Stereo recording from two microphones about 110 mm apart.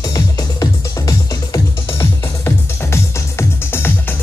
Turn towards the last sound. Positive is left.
turn(degrees=20)  # may be behind; listen again after turning